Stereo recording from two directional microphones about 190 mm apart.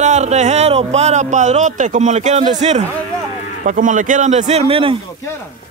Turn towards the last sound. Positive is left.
turn(degrees=-30)  # may be behind; listen again after turning